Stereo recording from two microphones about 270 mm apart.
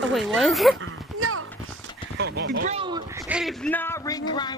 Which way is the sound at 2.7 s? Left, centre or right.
Centre.